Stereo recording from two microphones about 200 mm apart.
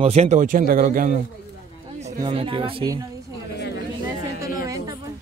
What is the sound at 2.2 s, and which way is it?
Speech, 25° right (ahead or behind).